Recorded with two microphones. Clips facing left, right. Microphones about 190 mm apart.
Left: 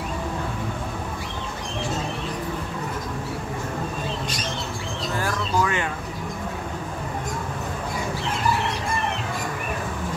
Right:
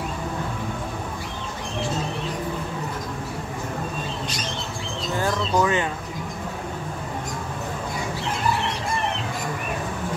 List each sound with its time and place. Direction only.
5.1 s bird: 20° right (ahead or behind)